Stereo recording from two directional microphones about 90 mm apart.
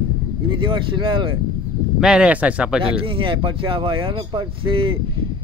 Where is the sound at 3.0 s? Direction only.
75° right (ahead or behind).